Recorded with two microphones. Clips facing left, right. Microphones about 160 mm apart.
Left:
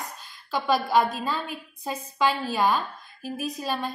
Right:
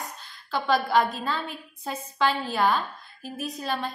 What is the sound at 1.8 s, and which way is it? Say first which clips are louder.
A woman's voice: left 1 dB; 10° left (ahead or behind).